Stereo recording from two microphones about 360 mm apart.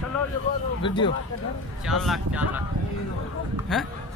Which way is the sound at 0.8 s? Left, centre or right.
Centre.